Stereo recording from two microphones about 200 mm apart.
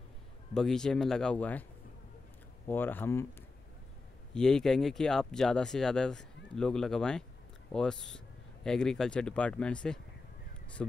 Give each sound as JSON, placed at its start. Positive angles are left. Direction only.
{"t": 0.6, "sound": "speech", "side_deg": 5}
{"t": 2.7, "sound": "speech", "side_deg": 10}
{"t": 4.3, "sound": "speech", "side_deg": 5}